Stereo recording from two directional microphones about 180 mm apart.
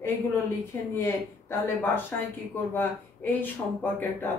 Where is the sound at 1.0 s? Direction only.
15° left (ahead or behind).